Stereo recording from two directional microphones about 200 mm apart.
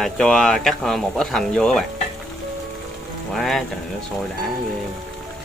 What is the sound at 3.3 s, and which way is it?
Speech, centre (ahead or behind).